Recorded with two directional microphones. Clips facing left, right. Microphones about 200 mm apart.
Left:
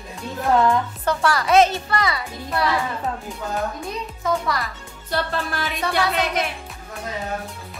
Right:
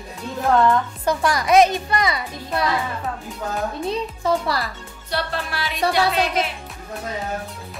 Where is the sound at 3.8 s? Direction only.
30° right (ahead or behind).